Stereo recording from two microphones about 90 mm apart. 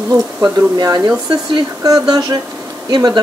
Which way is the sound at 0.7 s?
45° right (ahead or behind).